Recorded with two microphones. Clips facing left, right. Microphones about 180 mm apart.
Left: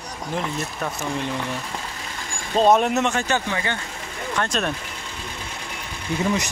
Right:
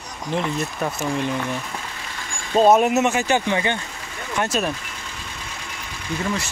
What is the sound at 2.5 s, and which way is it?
Speech, 5° right (ahead or behind).